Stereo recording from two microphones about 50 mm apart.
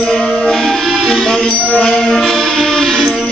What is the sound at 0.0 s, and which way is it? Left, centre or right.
Music, centre.